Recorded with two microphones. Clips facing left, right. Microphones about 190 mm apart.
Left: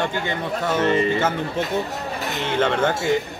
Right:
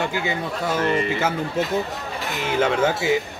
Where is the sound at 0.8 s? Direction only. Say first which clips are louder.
Left 3 dB; 25° left (ahead or behind).